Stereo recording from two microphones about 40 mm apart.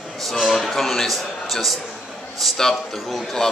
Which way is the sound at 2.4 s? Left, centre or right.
Centre.